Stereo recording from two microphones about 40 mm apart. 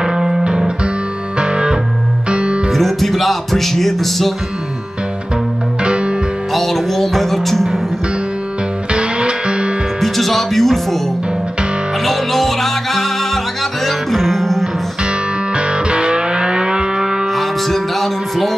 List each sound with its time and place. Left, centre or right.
0.0 s music: centre
1.4 s music: right
2.7 s music: centre
5.9 s music: right
6.5 s music: centre
8.9 s music: right
9.9 s speech: centre
12.0 s music: centre
15.5 s music: right
17.4 s music: centre